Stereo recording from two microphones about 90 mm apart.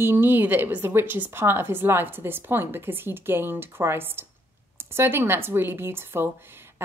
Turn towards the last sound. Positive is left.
turn(degrees=-25)  # may be behind; listen again after turning